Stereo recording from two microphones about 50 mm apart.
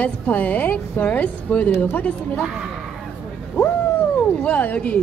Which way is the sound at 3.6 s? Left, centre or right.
Left.